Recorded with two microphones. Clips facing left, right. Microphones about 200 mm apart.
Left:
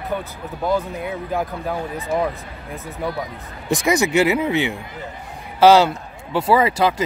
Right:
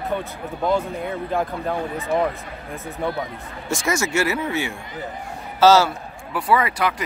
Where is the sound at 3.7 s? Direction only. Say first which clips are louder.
Left 5 dB; 15° left (ahead or behind).